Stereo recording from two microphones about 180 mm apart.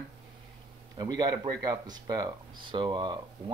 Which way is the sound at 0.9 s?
20° right (ahead or behind).